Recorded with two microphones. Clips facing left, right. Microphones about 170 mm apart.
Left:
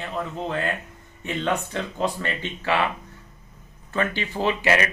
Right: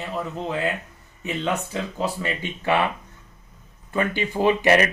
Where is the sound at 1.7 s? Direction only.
5° right (ahead or behind).